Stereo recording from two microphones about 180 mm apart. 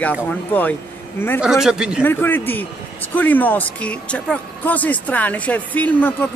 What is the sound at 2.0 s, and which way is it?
Speech, 10° left (ahead or behind).